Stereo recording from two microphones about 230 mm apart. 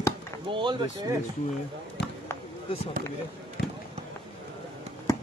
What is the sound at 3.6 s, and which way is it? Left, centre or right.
Fireworks, left.